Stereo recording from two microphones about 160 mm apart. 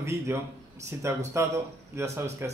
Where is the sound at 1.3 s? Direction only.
15° right (ahead or behind).